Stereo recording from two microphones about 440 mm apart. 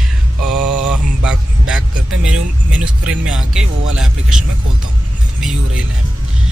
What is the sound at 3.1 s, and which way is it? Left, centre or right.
Speech, centre.